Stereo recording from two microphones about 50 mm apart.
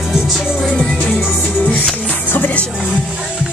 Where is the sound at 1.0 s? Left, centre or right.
Left.